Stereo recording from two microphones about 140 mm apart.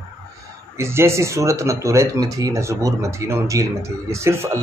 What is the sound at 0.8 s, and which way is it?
Speech, 20° right (ahead or behind).